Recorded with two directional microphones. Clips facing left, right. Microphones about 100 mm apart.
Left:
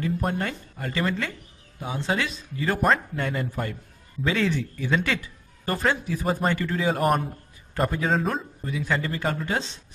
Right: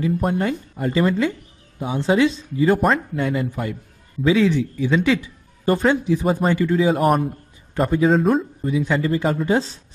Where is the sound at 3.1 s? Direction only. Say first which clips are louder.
Right 6 dB; 5° right (ahead or behind).